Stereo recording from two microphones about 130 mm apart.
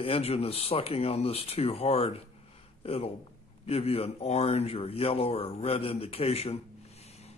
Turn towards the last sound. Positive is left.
turn(degrees=50)  # may be behind; listen again after turning